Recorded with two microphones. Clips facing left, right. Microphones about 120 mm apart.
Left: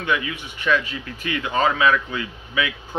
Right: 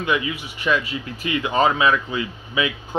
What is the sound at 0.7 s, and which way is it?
Speech, 20° right (ahead or behind).